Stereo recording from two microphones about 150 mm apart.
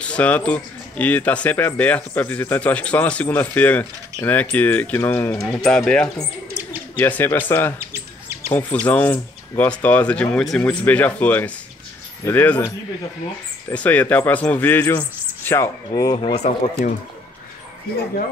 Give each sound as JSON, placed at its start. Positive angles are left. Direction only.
{"t": 0.0, "sound": "speech", "side_deg": 10}
{"t": 7.8, "sound": "a sound", "side_deg": -15}
{"t": 8.5, "sound": "speech", "side_deg": 10}
{"t": 15.9, "sound": "speech", "side_deg": 30}
{"t": 16.3, "sound": "speech", "side_deg": 50}